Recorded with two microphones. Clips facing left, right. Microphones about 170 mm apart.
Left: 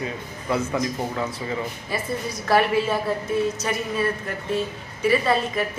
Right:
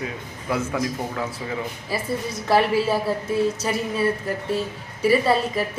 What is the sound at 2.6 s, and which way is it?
A woman's voice, 30° right (ahead or behind).